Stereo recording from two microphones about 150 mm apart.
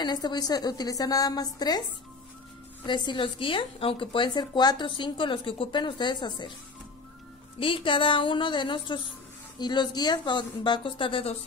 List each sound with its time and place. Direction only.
0.0 s a woman's voice: 30° left (ahead or behind)
2.9 s a woman's voice: 35° left (ahead or behind)
7.5 s a woman's voice: 35° left (ahead or behind)